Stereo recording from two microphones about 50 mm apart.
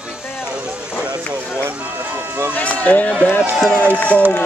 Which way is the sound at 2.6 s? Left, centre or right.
Left.